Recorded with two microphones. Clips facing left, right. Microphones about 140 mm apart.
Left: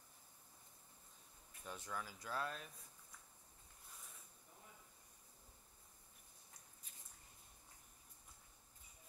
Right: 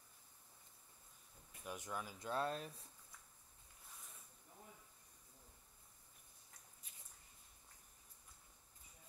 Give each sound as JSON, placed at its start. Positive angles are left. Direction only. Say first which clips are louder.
{"t": 1.6, "sound": "speech", "louder": "right 2 dB", "side_deg": -15}